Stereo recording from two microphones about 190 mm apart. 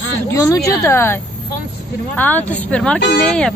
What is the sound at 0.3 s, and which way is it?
Speech, 15° left (ahead or behind).